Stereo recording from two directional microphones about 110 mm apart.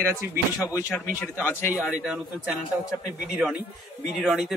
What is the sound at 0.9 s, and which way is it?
Speech, 20° left (ahead or behind).